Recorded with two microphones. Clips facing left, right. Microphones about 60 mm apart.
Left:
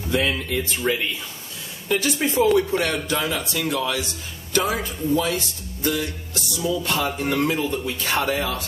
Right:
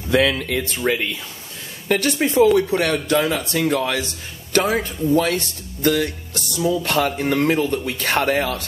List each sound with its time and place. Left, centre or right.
0.1 s speech: right
1.9 s speech: right